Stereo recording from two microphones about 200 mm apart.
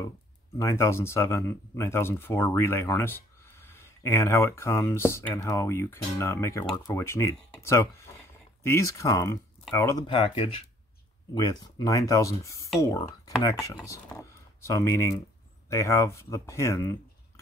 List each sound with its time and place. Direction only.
0.6 s speech: 15° left (ahead or behind)